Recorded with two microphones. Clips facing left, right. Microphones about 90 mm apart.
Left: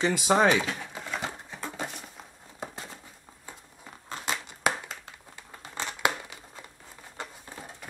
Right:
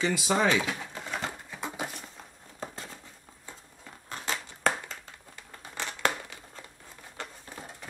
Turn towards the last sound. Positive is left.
turn(degrees=15)  # may be behind; listen again after turning